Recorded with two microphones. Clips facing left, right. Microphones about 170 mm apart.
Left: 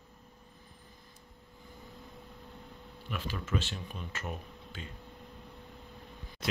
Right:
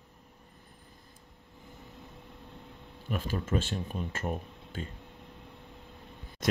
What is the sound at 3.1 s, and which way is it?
Speech, 45° right (ahead or behind).